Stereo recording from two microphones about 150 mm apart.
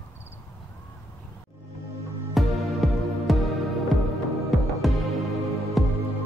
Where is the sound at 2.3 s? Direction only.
Centre (ahead or behind).